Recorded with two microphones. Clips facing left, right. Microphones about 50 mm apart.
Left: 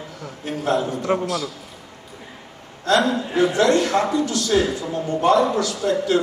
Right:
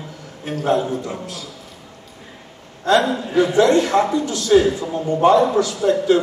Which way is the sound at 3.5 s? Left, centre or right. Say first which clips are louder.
Right 5 dB; centre.